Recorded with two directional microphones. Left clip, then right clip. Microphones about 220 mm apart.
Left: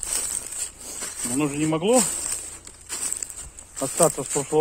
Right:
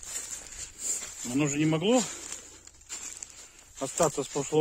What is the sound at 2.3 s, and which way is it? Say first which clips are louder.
Crumpling: left 9 dB; 50° left (ahead or behind).